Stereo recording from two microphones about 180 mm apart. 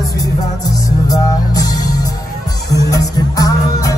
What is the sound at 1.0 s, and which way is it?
Music, 20° left (ahead or behind).